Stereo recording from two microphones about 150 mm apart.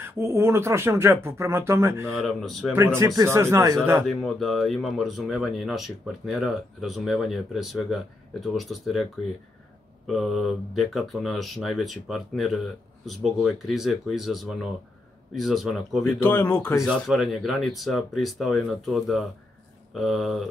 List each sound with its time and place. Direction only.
0.0 s speech: 15° right (ahead or behind)
2.1 s speech: centre (ahead or behind)
2.7 s speech: 15° right (ahead or behind)
4.1 s speech: centre (ahead or behind)
10.0 s speech: centre (ahead or behind)
16.0 s speech: 15° left (ahead or behind)
16.8 s speech: centre (ahead or behind)